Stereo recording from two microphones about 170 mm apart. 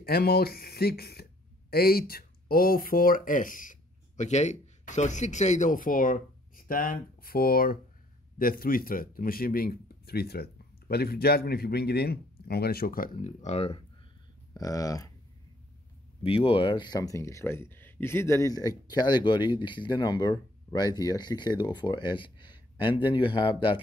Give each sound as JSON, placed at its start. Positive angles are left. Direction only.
{"t": 0.0, "sound": "speech", "side_deg": 65}
{"t": 14.5, "sound": "speech", "side_deg": 20}
{"t": 16.2, "sound": "speech", "side_deg": 35}